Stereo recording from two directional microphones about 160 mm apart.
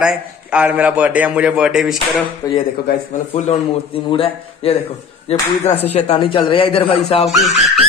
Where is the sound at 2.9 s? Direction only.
75° left (ahead or behind).